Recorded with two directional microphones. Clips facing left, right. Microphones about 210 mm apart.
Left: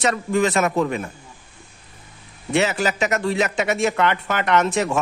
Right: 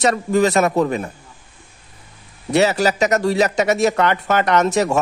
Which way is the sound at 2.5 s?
40° right (ahead or behind).